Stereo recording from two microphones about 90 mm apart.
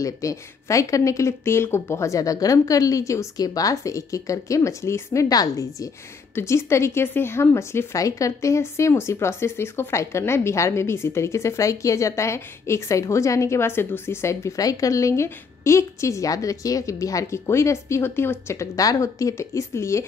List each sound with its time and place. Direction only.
0.0 s speech: 40° left (ahead or behind)
6.3 s speech: 30° left (ahead or behind)